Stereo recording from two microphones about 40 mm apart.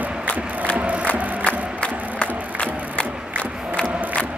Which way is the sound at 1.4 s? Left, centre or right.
Left.